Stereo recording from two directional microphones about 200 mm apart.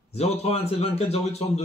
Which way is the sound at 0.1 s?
30° left (ahead or behind).